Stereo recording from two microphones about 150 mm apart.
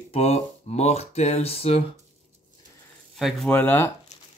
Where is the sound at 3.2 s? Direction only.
Centre (ahead or behind).